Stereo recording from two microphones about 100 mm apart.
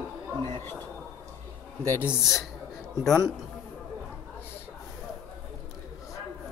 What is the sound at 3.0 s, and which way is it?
Speech, 5° left (ahead or behind).